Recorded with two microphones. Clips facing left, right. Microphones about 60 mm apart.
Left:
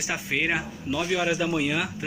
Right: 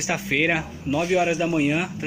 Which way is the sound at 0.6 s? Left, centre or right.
Right.